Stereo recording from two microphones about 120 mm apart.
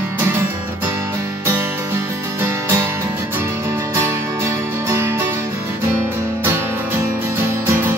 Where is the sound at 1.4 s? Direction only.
20° right (ahead or behind).